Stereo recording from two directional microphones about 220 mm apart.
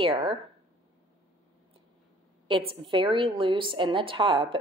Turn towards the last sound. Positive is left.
turn(degrees=-25)  # may be behind; listen again after turning